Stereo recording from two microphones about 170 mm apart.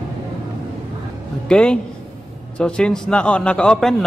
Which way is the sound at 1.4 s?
5° left (ahead or behind).